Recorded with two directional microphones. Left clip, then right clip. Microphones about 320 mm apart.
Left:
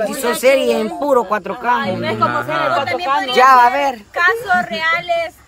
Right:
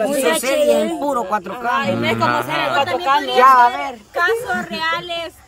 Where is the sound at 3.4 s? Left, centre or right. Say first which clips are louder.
Left 2 dB; left.